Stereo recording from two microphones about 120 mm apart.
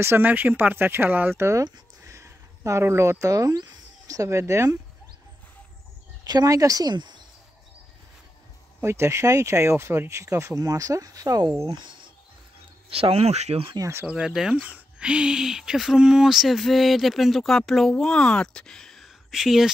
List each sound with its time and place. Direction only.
0.0 s speech: 15° right (ahead or behind)
6.2 s speech: 35° right (ahead or behind)
8.8 s speech: 20° right (ahead or behind); by 12.1 s 40° right (ahead or behind)
12.9 s speech: 55° right (ahead or behind)
13.7 s speech: 25° right (ahead or behind)
14.0 s speech: 5° right (ahead or behind)